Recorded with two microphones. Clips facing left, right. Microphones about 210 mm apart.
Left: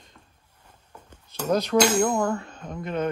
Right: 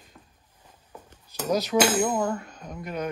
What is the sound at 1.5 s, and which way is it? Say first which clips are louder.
Hammer: left 2 dB; 5° right (ahead or behind).